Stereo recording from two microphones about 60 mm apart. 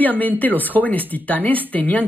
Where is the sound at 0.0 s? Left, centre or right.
Left.